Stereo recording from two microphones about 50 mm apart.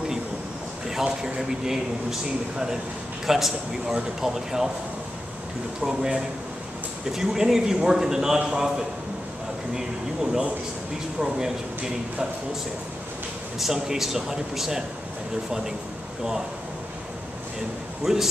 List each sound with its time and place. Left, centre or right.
0.8 s speech: centre
3.3 s a man's voice: centre
5.8 s speech: centre
11.3 s speech: centre
13.6 s speech: centre
18.0 s speech: centre